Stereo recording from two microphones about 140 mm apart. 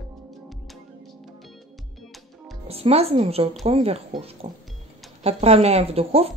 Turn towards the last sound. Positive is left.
turn(degrees=-45)  # may be behind; listen again after turning